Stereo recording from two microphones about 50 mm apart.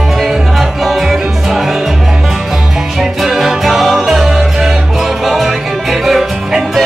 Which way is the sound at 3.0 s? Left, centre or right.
Centre.